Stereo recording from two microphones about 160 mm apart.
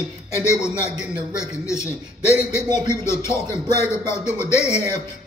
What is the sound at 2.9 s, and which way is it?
Speech, 15° left (ahead or behind).